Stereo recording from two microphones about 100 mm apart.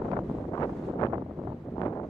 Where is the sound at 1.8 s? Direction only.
25° left (ahead or behind).